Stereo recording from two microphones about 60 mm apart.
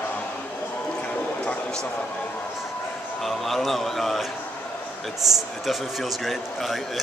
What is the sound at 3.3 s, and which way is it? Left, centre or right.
A man's voice, centre.